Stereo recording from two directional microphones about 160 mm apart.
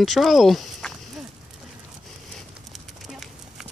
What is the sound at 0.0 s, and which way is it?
Speech, centre (ahead or behind).